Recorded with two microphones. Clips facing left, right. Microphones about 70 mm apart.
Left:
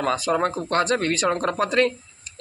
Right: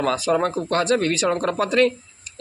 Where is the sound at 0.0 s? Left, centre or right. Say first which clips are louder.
Right 2 dB; left.